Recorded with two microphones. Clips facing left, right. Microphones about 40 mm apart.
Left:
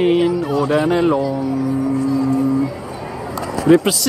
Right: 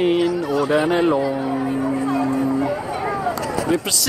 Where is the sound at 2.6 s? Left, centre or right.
Right.